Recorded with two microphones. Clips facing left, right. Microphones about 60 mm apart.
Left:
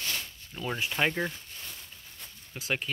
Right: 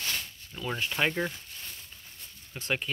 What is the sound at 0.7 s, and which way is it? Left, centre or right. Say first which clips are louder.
Speech: even; centre.